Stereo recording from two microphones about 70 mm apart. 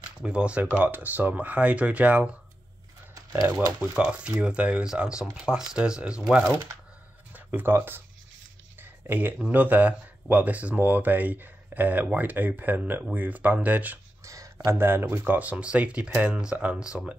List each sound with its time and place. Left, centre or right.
0.2 s speech: centre
3.8 s speech: centre
7.3 s speech: right
8.7 s a sound: right
9.5 s speech: right
14.2 s a sound: right
14.8 s speech: right; by 17.0 s centre